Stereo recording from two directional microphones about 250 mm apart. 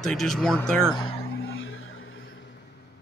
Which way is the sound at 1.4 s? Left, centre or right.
Left.